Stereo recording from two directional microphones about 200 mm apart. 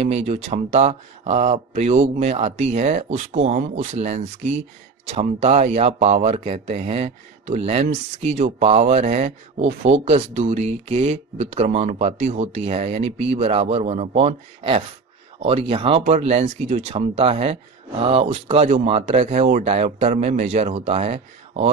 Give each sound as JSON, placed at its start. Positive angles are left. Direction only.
{"t": 0.0, "sound": "speech", "side_deg": -35}